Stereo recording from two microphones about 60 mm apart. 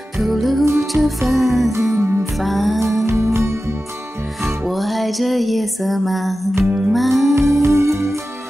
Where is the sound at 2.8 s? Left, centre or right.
Right.